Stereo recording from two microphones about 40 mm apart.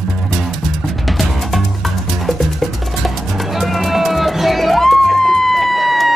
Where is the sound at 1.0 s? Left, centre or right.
Centre.